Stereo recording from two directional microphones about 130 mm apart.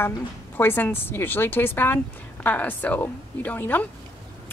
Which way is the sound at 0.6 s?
15° left (ahead or behind).